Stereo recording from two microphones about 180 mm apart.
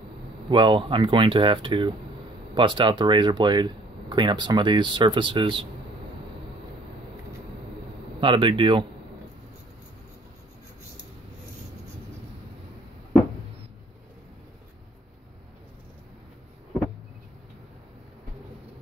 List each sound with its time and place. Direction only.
0.5 s speech: 25° right (ahead or behind)
8.2 s speech: 30° right (ahead or behind)